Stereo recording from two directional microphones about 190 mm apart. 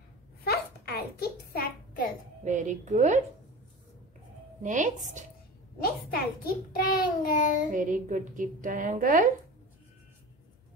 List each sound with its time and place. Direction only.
0.4 s a sound: 55° left (ahead or behind)
2.4 s a woman's voice: 40° right (ahead or behind)
4.6 s a woman's voice: 40° right (ahead or behind)
5.8 s a child's voice: 50° left (ahead or behind)
7.7 s speech: 45° right (ahead or behind)